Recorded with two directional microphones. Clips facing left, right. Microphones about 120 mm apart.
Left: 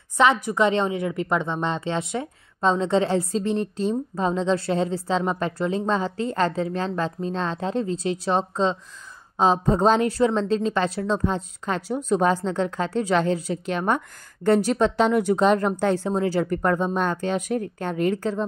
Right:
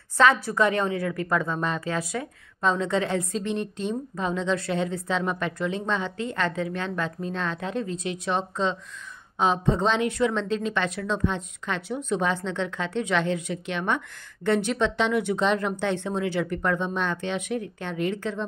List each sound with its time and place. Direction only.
0.2 s a woman's voice: 20° left (ahead or behind); by 18.4 s 40° left (ahead or behind)